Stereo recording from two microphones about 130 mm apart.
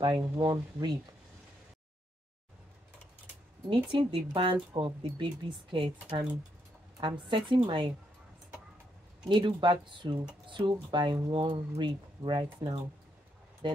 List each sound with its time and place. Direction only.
0.0 s a woman's voice: 35° right (ahead or behind)
3.7 s a woman's voice: 40° right (ahead or behind)
9.3 s a woman's voice: 40° right (ahead or behind)